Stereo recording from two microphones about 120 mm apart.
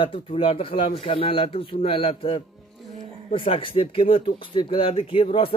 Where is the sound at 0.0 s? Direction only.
50° left (ahead or behind).